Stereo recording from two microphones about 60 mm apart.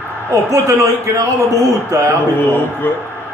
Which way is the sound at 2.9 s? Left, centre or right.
Left.